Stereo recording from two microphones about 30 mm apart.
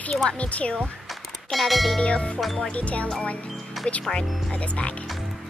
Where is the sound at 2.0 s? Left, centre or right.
Left.